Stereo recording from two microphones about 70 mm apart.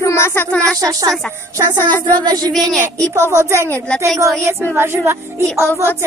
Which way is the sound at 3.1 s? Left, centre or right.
Right.